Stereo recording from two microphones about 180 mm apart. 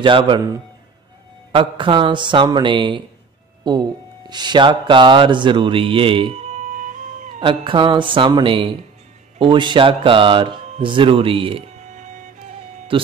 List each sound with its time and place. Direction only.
0.0 s speech: 25° right (ahead or behind); by 7.3 s 45° right (ahead or behind)
7.3 s speech: 25° right (ahead or behind); by 12.3 s 45° right (ahead or behind)
12.9 s speech: 30° right (ahead or behind)